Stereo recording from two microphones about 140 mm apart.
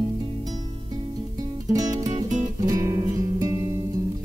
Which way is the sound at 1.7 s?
25° right (ahead or behind).